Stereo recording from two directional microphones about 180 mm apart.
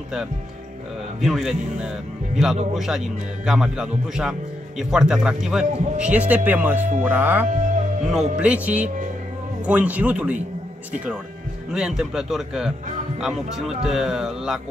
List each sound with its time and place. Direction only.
1.2 s speech: centre (ahead or behind)
8.8 s speech: 45° right (ahead or behind)
9.7 s speech: 10° right (ahead or behind)
11.7 s speech: 5° right (ahead or behind)